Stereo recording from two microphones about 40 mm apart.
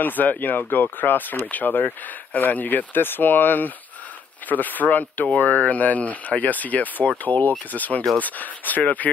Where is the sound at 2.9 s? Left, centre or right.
Left.